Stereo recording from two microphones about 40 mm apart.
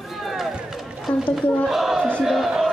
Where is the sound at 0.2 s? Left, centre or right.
Centre.